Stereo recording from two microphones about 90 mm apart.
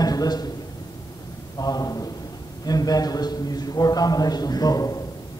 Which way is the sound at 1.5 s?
45° left (ahead or behind).